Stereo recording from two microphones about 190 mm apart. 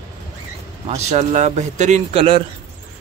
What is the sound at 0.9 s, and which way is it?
Speech, 35° right (ahead or behind).